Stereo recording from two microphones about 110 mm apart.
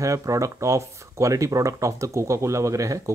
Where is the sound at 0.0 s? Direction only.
30° right (ahead or behind).